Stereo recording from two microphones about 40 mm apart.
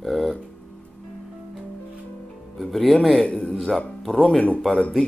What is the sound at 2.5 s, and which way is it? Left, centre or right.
Music, centre.